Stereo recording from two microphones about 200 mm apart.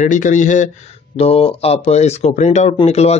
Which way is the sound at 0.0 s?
40° left (ahead or behind).